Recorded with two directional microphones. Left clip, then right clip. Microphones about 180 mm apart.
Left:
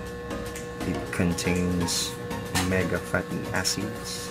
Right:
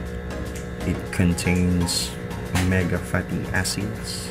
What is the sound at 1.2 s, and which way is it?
Speech, centre (ahead or behind).